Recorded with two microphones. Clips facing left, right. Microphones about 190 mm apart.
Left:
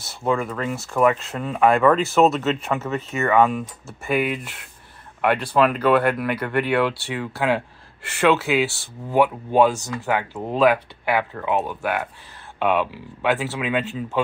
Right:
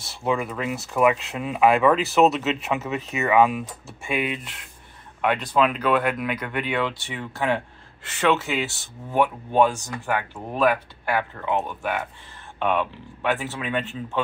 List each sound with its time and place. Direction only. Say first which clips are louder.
0.0 s speech: left 2 dB; centre (ahead or behind)
8.6 s speech: left 6 dB; 20° right (ahead or behind)
9.1 s speech: left 3 dB; 10° left (ahead or behind)